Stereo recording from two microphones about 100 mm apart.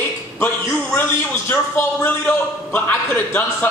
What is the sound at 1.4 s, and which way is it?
A man's voice, 25° left (ahead or behind).